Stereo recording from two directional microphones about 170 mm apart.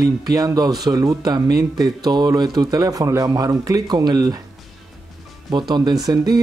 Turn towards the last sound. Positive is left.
turn(degrees=-20)  # may be behind; listen again after turning